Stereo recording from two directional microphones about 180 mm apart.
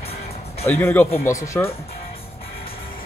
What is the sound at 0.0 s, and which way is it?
Music, 35° left (ahead or behind).